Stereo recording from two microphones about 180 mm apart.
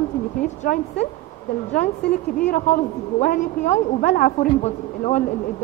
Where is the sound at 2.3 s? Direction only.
50° left (ahead or behind).